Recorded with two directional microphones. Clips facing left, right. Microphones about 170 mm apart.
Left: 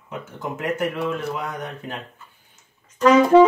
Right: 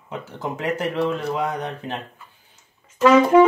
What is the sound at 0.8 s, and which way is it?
Speech, 35° right (ahead or behind).